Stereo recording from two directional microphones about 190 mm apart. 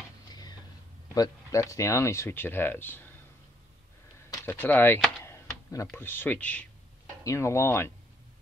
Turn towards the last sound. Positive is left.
turn(degrees=15)  # may be behind; listen again after turning